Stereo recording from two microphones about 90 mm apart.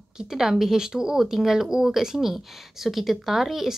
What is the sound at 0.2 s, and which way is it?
Speech, 5° right (ahead or behind).